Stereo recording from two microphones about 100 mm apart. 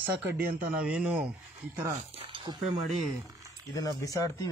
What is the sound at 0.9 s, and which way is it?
Speech, 10° right (ahead or behind).